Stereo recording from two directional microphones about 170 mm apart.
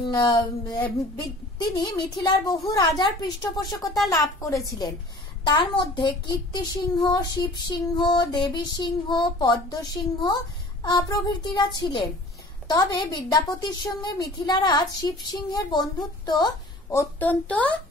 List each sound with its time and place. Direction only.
0.0 s a child's voice: 25° left (ahead or behind); by 17.7 s 10° left (ahead or behind)